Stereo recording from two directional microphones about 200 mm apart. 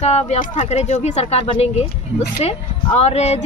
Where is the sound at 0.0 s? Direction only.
30° left (ahead or behind).